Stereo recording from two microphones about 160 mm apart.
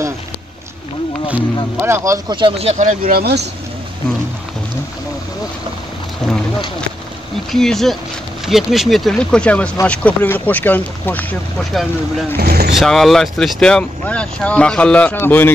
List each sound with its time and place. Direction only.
1.3 s speech: 15° right (ahead or behind); by 3.4 s 80° right
7.5 s speech: centre (ahead or behind)
12.4 s speech: 80° right
12.7 s speech: centre (ahead or behind)